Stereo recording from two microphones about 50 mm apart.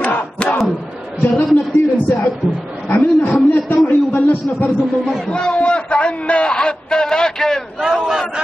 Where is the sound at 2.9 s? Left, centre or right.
Left.